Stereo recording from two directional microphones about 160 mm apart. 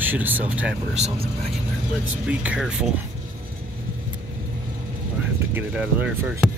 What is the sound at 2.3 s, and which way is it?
Speech, 5° right (ahead or behind).